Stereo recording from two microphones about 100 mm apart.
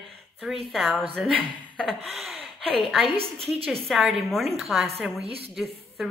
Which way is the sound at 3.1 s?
75° right (ahead or behind).